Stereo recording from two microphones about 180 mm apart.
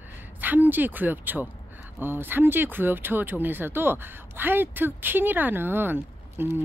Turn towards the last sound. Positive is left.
turn(degrees=-10)  # may be behind; listen again after turning